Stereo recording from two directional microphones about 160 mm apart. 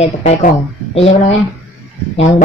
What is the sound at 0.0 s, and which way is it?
Speech, 45° left (ahead or behind).